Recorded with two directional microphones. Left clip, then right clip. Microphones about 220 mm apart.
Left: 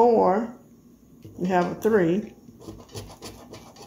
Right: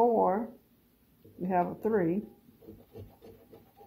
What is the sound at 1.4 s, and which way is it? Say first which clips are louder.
Speech: left 6 dB; 15° right (ahead or behind).